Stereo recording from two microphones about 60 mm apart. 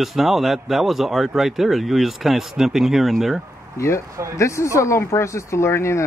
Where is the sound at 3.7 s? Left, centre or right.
Left.